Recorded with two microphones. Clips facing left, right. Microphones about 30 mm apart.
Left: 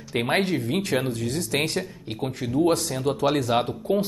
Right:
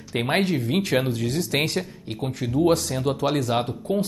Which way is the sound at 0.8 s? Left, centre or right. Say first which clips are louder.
Right 2 dB; right.